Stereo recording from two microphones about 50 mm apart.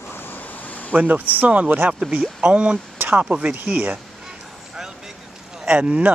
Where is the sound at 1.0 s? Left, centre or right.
Right.